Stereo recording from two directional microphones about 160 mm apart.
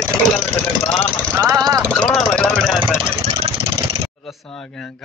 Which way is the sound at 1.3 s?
20° right (ahead or behind).